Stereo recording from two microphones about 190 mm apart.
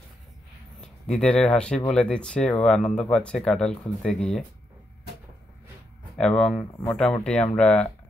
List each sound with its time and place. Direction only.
0.7 s speech: 5° left (ahead or behind)
6.1 s speech: 5° left (ahead or behind)